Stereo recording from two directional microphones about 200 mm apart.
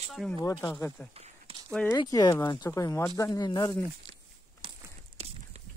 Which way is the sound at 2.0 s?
20° left (ahead or behind).